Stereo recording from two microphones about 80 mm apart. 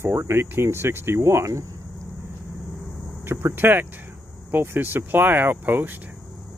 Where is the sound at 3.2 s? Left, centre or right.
Right.